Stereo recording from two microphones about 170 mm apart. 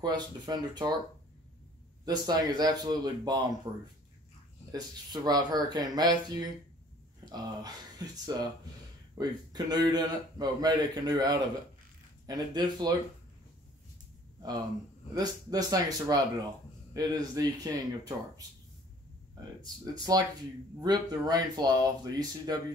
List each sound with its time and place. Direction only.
0.0 s a man's voice: 25° right (ahead or behind)
2.0 s a man's voice: 25° right (ahead or behind)
15.1 s a man's voice: 20° right (ahead or behind)
19.6 s a man's voice: 20° right (ahead or behind)